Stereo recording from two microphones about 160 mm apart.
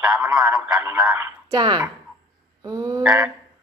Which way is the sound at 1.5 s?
30° right (ahead or behind).